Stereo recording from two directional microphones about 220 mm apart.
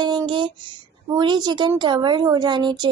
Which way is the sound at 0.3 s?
20° right (ahead or behind).